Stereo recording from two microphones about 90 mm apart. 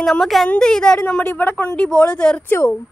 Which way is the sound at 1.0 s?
20° left (ahead or behind).